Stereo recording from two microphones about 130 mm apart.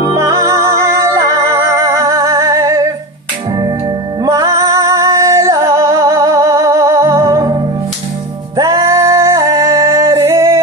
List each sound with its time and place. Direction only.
0.1 s music: 25° right (ahead or behind)
4.2 s music: 25° right (ahead or behind)
8.5 s a sound: 25° right (ahead or behind)